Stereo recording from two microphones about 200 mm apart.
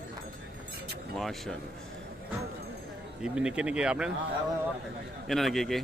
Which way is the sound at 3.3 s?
5° right (ahead or behind).